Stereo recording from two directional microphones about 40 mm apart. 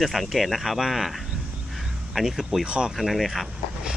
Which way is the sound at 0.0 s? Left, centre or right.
Centre.